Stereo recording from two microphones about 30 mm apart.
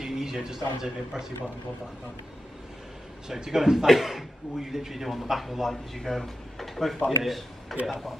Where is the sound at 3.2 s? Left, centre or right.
Centre.